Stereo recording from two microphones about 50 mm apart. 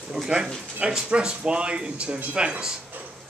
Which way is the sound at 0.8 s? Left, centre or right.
Centre.